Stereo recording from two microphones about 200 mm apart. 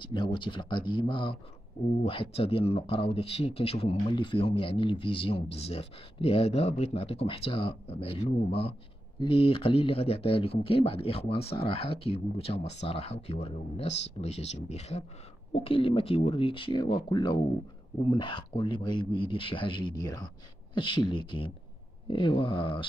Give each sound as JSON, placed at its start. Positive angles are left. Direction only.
{"t": 0.0, "sound": "speech", "side_deg": 25}